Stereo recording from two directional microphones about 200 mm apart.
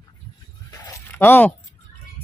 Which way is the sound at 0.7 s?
15° left (ahead or behind).